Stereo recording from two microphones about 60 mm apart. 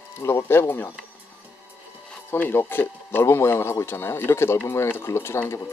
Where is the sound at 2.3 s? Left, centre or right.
Left.